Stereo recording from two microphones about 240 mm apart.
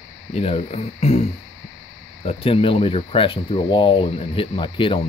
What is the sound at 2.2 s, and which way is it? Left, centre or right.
Speech, left.